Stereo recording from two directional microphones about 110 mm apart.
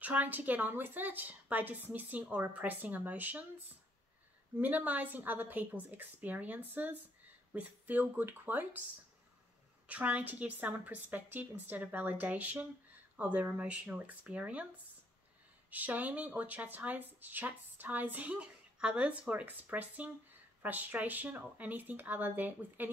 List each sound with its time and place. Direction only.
0.0 s speech: 15° right (ahead or behind)
4.6 s speech: 15° right (ahead or behind)
9.8 s speech: 15° right (ahead or behind)
15.7 s speech: 15° right (ahead or behind)